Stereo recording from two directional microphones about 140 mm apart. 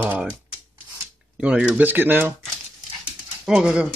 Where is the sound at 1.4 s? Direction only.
5° right (ahead or behind).